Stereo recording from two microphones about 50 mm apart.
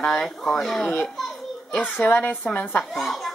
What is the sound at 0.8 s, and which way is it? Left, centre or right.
Speech, centre.